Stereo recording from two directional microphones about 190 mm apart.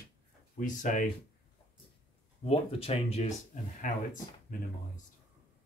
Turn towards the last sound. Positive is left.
turn(degrees=45)  # may be behind; listen again after turning